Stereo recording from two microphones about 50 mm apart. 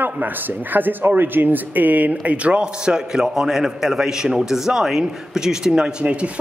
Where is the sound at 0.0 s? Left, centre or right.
Right.